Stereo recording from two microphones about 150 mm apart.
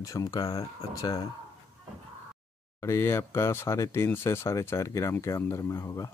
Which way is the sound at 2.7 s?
15° left (ahead or behind).